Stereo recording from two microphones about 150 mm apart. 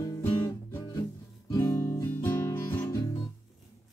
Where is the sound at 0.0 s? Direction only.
15° left (ahead or behind).